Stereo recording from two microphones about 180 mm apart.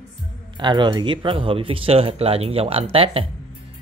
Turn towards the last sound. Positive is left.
turn(degrees=-30)  # may be behind; listen again after turning